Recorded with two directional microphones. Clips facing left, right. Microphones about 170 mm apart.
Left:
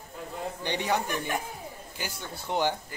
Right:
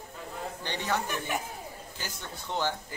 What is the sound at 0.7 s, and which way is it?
A man's voice, 15° left (ahead or behind).